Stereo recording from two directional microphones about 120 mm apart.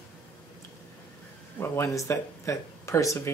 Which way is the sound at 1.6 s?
20° left (ahead or behind).